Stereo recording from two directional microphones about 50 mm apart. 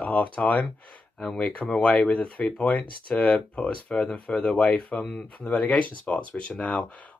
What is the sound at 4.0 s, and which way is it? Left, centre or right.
Speech, centre.